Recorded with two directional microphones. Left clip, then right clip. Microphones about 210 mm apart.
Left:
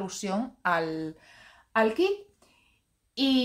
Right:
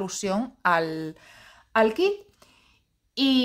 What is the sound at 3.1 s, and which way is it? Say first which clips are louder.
Speech: right 3 dB; 50° right (ahead or behind).